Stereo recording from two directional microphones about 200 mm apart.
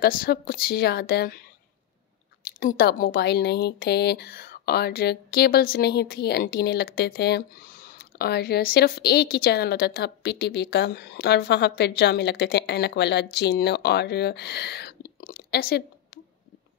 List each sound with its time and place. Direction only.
0.0 s a woman's voice: 50° left (ahead or behind)
2.6 s speech: 45° left (ahead or behind)
15.1 s a sound: 50° left (ahead or behind)